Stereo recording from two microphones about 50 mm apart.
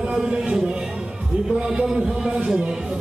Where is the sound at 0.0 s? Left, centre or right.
Centre.